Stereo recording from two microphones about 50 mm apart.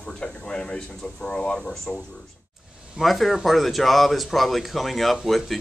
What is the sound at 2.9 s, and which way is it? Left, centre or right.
Speech, centre.